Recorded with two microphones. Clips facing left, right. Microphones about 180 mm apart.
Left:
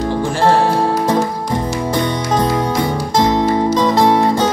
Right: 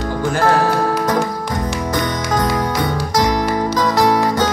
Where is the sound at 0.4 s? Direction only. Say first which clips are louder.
Left 2 dB; 25° left (ahead or behind).